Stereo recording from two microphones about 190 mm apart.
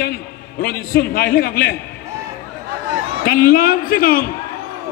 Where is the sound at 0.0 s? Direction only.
55° left (ahead or behind).